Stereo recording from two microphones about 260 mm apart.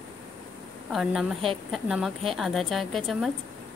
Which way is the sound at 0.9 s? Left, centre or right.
Centre.